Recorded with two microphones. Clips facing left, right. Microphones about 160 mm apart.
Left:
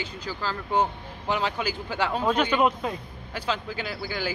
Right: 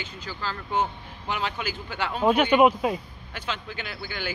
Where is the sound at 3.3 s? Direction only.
35° left (ahead or behind).